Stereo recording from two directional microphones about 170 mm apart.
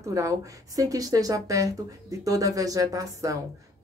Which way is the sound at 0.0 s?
20° right (ahead or behind).